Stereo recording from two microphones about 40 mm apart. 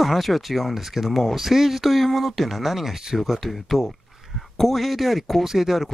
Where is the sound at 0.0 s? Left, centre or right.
Centre.